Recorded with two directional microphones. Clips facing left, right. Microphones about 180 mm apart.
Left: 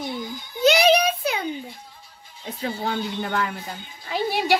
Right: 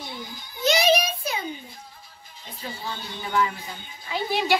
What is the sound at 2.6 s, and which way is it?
Speech, 65° left (ahead or behind).